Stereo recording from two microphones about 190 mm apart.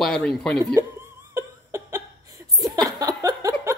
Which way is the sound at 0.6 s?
15° right (ahead or behind).